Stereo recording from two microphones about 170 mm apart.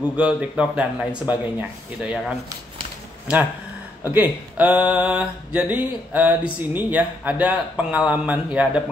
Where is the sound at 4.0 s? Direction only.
10° right (ahead or behind).